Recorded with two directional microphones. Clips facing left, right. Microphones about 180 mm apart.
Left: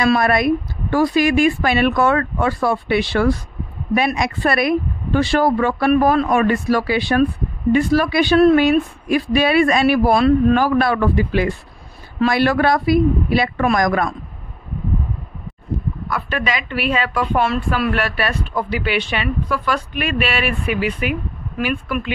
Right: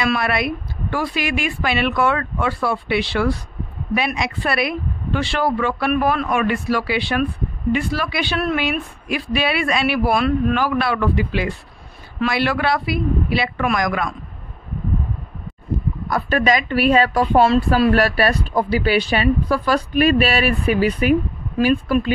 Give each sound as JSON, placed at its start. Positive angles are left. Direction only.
{"t": 0.0, "sound": "a woman's voice", "side_deg": 45}
{"t": 16.1, "sound": "speech", "side_deg": -40}